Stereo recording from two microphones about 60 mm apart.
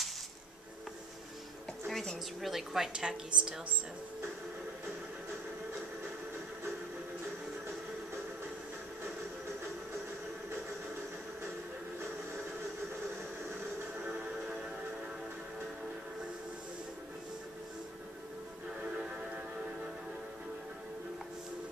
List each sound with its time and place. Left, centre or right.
1.9 s a woman's voice: centre
18.8 s music: right